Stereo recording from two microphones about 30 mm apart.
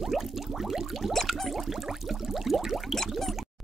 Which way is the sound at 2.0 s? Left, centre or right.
Centre.